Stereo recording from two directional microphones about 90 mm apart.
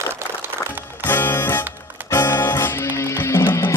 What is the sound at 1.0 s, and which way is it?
Music, 25° left (ahead or behind).